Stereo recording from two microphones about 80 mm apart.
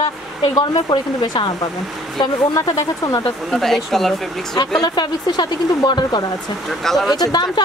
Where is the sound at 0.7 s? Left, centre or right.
Left.